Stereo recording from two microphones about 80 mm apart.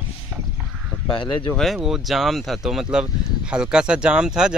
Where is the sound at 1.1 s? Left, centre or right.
Left.